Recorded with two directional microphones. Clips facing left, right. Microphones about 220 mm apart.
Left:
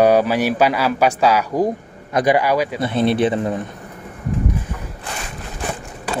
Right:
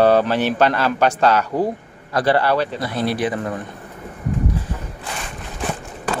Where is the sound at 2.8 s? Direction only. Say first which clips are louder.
Left 5 dB; 25° left (ahead or behind).